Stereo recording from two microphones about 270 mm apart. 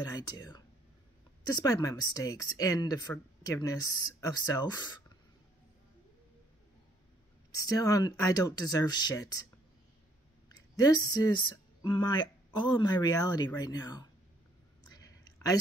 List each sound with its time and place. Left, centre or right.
0.1 s speech: centre
7.6 s speech: centre
10.8 s speech: centre